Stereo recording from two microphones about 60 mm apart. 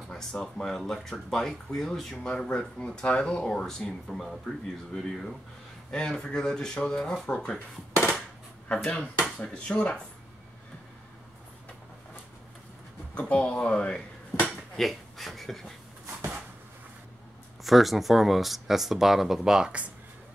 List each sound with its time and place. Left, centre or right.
0.1 s speech: centre
8.6 s speech: centre
13.1 s speech: centre
14.8 s speech: centre
17.6 s speech: centre